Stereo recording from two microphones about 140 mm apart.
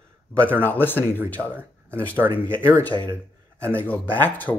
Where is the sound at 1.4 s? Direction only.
Centre (ahead or behind).